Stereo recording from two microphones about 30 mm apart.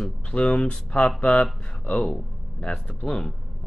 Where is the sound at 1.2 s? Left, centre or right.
Left.